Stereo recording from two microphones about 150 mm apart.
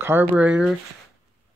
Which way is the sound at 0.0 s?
10° right (ahead or behind).